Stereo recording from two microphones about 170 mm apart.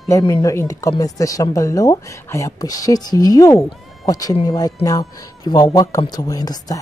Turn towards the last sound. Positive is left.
turn(degrees=20)  # may be behind; listen again after turning